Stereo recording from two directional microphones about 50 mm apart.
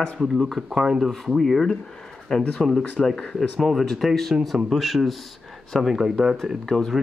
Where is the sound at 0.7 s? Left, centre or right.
Centre.